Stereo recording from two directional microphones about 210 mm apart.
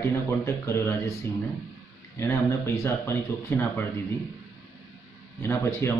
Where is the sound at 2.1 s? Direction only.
10° left (ahead or behind).